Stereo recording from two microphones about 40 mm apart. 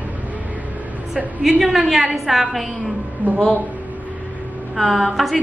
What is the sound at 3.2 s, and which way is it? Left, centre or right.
Speech, right.